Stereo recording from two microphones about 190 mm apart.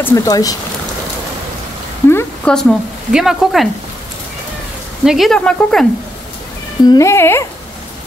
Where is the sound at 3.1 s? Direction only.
Centre (ahead or behind).